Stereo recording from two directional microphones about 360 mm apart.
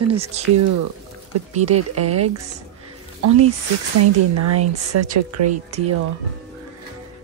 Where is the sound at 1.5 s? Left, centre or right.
Centre.